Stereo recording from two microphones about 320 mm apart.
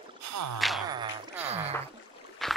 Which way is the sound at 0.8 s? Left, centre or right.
Centre.